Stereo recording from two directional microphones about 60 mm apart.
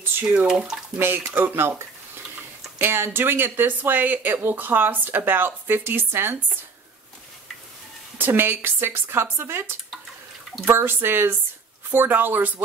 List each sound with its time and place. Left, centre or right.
0.2 s speech: right
0.5 s speech: centre
0.9 s speech: right
2.8 s speech: right
8.2 s speech: right